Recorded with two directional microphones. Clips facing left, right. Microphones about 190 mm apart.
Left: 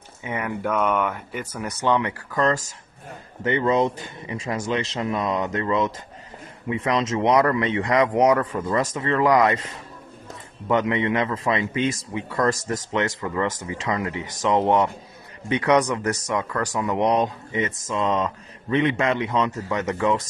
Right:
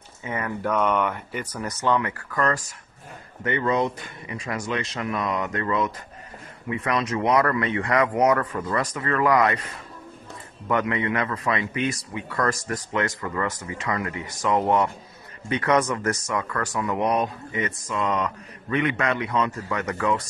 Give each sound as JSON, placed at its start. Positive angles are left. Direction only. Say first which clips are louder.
{"t": 0.2, "sound": "speech", "louder": "left 1 dB", "side_deg": 15}
{"t": 0.5, "sound": "speech", "louder": "even", "side_deg": 5}
{"t": 10.7, "sound": "speech", "louder": "left 3 dB", "side_deg": 20}
{"t": 12.3, "sound": "speech", "louder": "left 3 dB", "side_deg": 15}